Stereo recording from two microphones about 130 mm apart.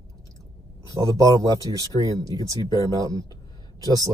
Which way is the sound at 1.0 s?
25° right (ahead or behind).